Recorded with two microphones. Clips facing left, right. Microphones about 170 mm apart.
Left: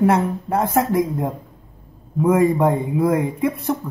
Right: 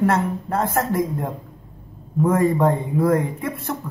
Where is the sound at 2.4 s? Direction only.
15° left (ahead or behind).